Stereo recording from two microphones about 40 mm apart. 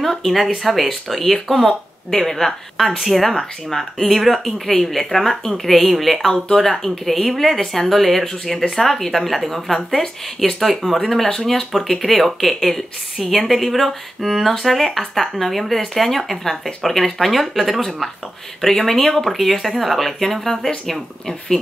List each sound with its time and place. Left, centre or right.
0.0 s speech: centre